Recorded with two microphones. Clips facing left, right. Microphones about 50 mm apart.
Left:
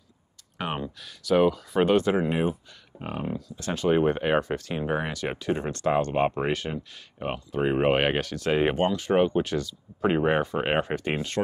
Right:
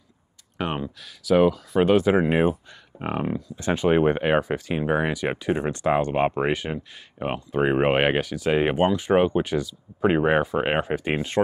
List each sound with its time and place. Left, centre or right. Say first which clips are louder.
0.6 s speech: right 3 dB; centre
2.1 s speech: right 5 dB; right
3.3 s speech: right 6 dB; right
4.2 s speech: right 3 dB; centre